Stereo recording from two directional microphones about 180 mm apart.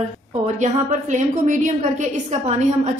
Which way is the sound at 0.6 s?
45° right (ahead or behind).